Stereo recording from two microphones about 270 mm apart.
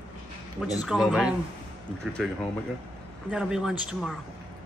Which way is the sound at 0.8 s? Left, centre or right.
Centre.